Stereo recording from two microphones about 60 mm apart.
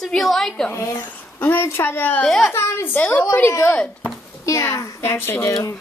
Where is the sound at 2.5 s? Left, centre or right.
Left.